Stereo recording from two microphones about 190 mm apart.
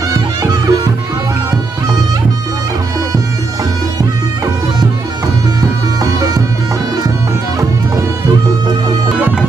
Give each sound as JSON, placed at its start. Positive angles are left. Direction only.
{"t": 0.4, "sound": "music", "side_deg": -20}